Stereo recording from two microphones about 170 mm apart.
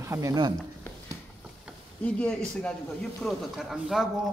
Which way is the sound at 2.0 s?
5° left (ahead or behind).